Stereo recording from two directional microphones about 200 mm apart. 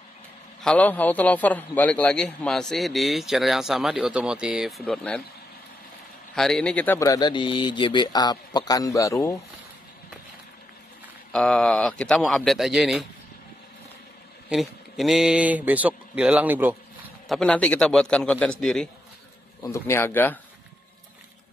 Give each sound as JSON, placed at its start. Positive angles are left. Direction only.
{"t": 0.6, "sound": "a man's voice", "side_deg": 5}
{"t": 6.3, "sound": "a man's voice", "side_deg": 0}
{"t": 7.0, "sound": "speech", "side_deg": 20}
{"t": 11.3, "sound": "a man's voice", "side_deg": 5}
{"t": 14.5, "sound": "speech", "side_deg": 0}
{"t": 17.4, "sound": "a man's voice", "side_deg": 5}